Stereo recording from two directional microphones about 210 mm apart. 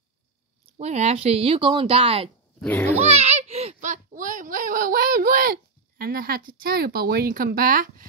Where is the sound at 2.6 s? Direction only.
10° left (ahead or behind).